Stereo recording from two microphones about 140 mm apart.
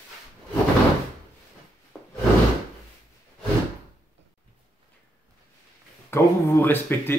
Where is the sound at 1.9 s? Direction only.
5° left (ahead or behind).